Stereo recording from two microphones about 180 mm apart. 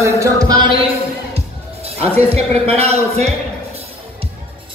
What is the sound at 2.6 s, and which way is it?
Speech, 35° right (ahead or behind).